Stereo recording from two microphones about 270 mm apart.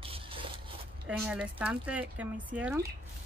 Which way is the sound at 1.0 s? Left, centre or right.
Centre.